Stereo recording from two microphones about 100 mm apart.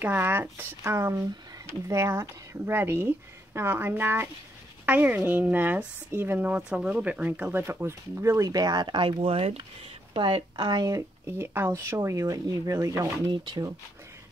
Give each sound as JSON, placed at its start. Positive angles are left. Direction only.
{"t": 0.0, "sound": "speech", "side_deg": -20}
{"t": 7.6, "sound": "speech", "side_deg": -25}
{"t": 10.1, "sound": "speech", "side_deg": -55}
{"t": 10.9, "sound": "speech", "side_deg": -30}
{"t": 13.3, "sound": "speech", "side_deg": -50}